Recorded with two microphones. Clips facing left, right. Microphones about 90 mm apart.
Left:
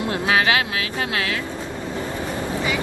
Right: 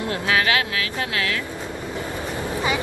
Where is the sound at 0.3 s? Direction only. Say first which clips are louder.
Left 2 dB; 25° left (ahead or behind).